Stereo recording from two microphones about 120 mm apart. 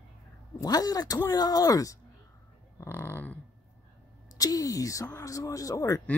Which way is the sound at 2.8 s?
20° left (ahead or behind).